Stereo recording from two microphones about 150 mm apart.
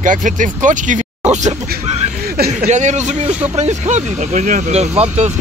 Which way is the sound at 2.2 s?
90° right.